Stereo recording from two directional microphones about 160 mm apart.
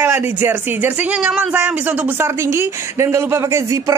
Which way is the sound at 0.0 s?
10° right (ahead or behind).